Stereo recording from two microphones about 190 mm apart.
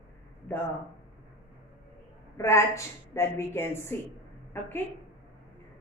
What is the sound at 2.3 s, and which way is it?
A woman's voice, 15° left (ahead or behind).